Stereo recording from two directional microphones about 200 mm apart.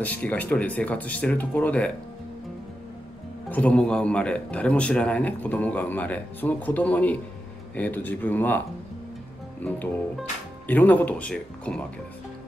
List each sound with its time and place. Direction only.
0.0 s speech: 10° left (ahead or behind)
3.4 s speech: 5° left (ahead or behind)